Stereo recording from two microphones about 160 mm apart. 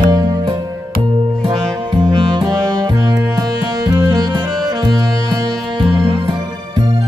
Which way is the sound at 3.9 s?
25° right (ahead or behind).